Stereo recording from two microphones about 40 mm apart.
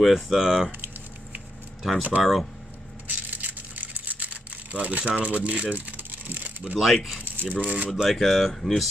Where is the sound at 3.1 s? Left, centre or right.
Right.